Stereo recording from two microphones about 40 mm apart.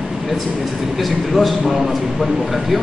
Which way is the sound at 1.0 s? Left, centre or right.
Centre.